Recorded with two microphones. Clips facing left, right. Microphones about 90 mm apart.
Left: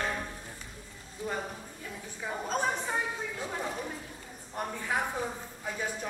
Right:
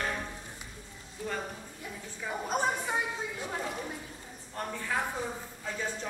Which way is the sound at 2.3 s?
10° right (ahead or behind).